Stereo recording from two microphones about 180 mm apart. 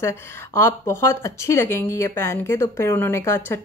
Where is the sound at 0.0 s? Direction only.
15° left (ahead or behind).